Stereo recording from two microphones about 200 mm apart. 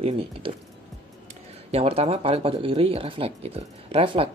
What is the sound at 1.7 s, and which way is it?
Speech, 30° right (ahead or behind).